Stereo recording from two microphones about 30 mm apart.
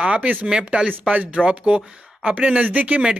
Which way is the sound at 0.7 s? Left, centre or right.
Right.